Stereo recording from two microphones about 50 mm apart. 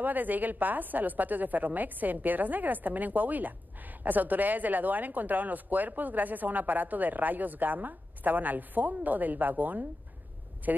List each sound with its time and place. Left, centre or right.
0.0 s a woman's voice: right